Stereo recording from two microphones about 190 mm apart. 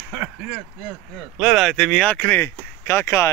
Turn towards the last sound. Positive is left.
turn(degrees=15)  # may be behind; listen again after turning